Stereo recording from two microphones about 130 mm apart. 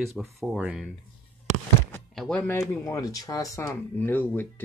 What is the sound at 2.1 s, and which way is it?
Speech, 10° left (ahead or behind).